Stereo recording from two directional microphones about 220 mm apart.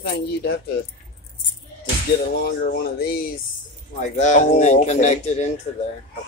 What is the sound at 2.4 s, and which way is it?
Speech, 45° left (ahead or behind).